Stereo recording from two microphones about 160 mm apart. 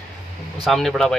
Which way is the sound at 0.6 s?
Centre (ahead or behind).